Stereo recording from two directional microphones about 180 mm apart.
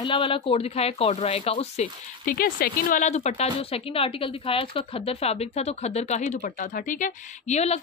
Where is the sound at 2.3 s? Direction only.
55° left (ahead or behind).